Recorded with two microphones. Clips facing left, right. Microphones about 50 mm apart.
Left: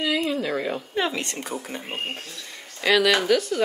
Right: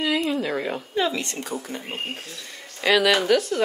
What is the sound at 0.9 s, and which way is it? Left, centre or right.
Speech, left.